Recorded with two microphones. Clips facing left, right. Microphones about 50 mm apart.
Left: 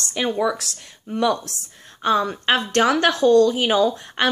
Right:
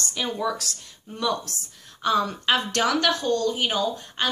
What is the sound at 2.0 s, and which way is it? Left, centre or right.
A woman's voice, left.